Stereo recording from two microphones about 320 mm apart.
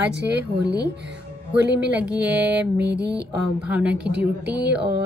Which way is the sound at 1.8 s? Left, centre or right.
Centre.